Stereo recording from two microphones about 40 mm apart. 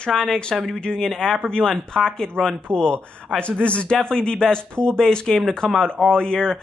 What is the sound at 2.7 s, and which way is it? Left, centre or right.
Speech, left.